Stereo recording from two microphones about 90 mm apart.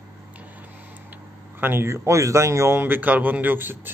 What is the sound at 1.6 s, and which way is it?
Speech, 25° right (ahead or behind).